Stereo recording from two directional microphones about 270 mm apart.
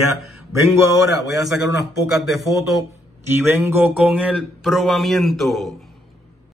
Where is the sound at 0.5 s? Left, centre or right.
Centre.